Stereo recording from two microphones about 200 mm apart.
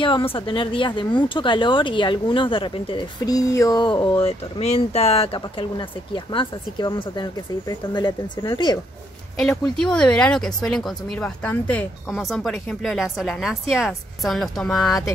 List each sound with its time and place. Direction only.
0.0 s speech: 25° left (ahead or behind)
9.4 s speech: centre (ahead or behind)